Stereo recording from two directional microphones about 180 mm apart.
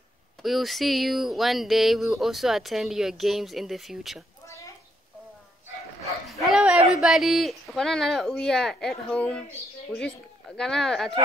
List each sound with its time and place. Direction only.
0.4 s speech: centre (ahead or behind)
4.5 s a sound: 15° left (ahead or behind)
6.2 s dog: centre (ahead or behind)
7.0 s speech: centre (ahead or behind)